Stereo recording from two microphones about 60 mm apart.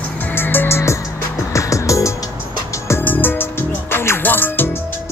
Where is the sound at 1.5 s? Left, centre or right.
Left.